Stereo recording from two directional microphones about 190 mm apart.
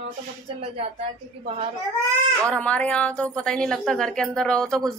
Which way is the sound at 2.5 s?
5° left (ahead or behind).